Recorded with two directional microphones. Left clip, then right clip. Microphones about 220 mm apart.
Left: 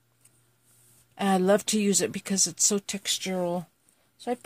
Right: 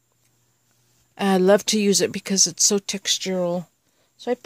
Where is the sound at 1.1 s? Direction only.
45° right (ahead or behind).